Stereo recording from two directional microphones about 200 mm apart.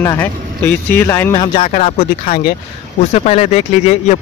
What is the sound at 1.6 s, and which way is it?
Speech, 35° left (ahead or behind).